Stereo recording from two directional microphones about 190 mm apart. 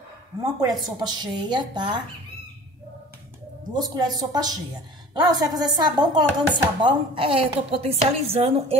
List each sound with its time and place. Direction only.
0.4 s speech: 20° right (ahead or behind)
3.7 s speech: 20° right (ahead or behind)